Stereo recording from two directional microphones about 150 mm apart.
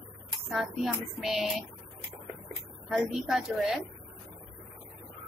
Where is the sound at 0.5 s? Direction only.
Centre (ahead or behind).